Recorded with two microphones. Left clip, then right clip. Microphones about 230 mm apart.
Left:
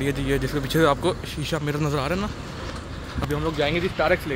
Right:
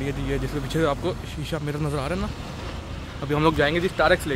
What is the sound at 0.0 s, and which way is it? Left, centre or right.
Speech, centre.